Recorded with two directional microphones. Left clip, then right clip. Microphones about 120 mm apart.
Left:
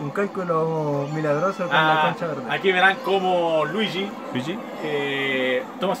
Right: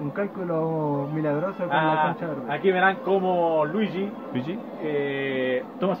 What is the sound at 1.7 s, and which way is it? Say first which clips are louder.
A man's voice: left 3 dB; 20° right (ahead or behind).